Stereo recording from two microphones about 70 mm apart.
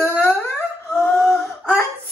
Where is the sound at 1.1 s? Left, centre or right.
Centre.